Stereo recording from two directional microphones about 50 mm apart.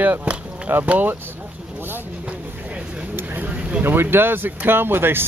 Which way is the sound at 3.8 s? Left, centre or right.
Right.